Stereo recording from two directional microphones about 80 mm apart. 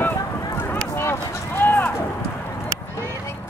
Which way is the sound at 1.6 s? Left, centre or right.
Left.